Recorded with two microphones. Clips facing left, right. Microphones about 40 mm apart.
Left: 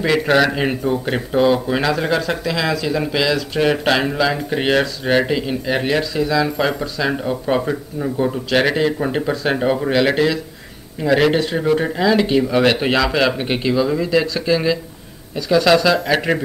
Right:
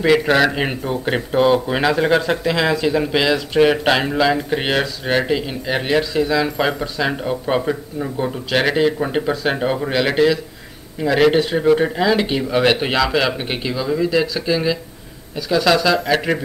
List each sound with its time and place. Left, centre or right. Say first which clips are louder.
0.0 s speech: right 1 dB; centre
0.6 s speech: left 2 dB; centre